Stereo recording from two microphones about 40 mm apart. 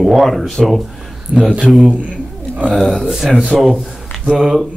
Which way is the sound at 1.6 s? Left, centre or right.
Centre.